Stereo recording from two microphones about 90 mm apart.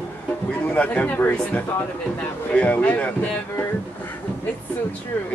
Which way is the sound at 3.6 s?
20° left (ahead or behind).